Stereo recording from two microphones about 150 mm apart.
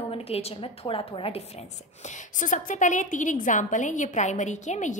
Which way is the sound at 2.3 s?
60° left (ahead or behind).